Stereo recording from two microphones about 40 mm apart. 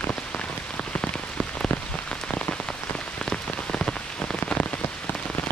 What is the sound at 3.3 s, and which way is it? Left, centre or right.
Rain on surface, centre.